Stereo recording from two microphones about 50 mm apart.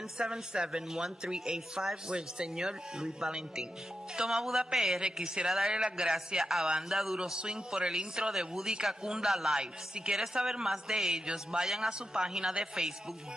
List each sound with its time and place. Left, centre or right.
0.2 s a man's voice: centre